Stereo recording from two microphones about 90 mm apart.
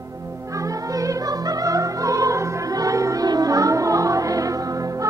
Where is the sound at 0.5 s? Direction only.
40° right (ahead or behind).